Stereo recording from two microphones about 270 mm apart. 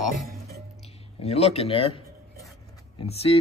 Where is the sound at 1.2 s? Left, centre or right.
Left.